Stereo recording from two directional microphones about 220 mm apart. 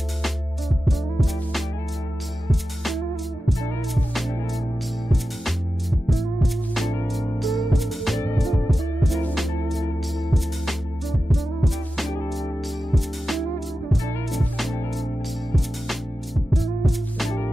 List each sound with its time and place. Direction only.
0.2 s music: centre (ahead or behind)